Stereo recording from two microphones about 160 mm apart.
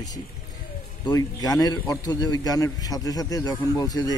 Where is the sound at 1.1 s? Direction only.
25° left (ahead or behind).